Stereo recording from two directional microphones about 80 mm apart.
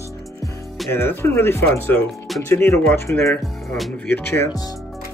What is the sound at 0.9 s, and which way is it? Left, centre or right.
Speech, left.